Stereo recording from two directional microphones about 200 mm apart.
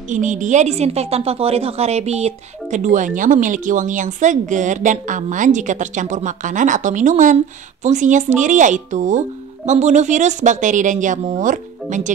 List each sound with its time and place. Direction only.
0.1 s a woman's voice: 40° right (ahead or behind)